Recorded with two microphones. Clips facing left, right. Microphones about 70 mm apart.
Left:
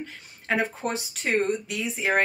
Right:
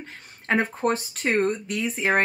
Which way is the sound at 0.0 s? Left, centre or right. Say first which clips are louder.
Left 2 dB; right.